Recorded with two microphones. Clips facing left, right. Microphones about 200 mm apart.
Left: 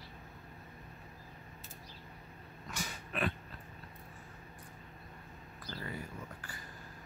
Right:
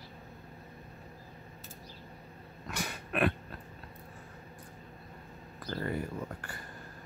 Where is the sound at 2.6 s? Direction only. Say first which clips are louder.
Right 5 dB; 65° right (ahead or behind).